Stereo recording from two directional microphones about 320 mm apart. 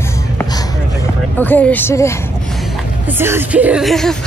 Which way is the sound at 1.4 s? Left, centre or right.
Centre.